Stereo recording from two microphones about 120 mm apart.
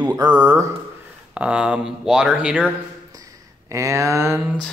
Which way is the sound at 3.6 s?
25° right (ahead or behind).